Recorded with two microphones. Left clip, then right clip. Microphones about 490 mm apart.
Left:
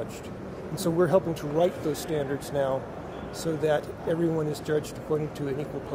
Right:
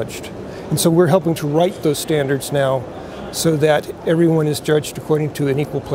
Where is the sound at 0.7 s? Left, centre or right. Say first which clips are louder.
Right 9 dB; right.